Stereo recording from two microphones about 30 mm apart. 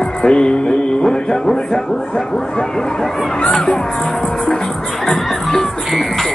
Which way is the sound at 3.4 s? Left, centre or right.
Left.